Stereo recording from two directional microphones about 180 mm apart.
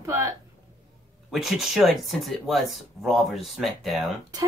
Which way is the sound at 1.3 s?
Centre (ahead or behind).